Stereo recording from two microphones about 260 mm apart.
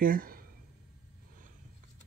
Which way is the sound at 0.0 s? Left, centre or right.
Right.